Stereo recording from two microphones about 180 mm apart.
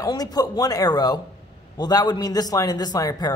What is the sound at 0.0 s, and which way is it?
A man's voice, 20° left (ahead or behind).